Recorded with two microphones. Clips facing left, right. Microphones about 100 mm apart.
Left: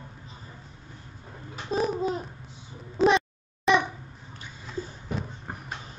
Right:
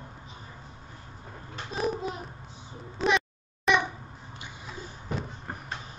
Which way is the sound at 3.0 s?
35° left (ahead or behind).